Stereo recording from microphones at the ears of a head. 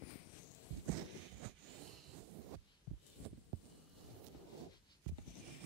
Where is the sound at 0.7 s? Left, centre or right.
Right.